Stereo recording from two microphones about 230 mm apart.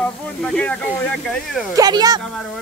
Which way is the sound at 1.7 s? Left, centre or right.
Centre.